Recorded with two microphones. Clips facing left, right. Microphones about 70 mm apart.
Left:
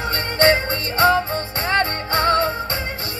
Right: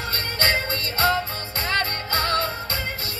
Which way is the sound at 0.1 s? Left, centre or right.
Left.